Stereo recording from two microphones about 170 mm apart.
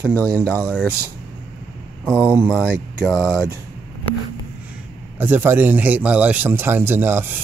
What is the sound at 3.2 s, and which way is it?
Speech, 5° right (ahead or behind).